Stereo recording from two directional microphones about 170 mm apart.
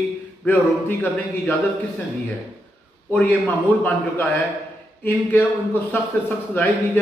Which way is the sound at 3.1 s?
10° left (ahead or behind).